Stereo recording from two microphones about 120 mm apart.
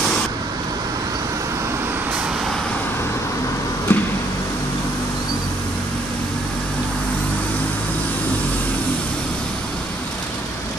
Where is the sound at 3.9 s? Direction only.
15° left (ahead or behind).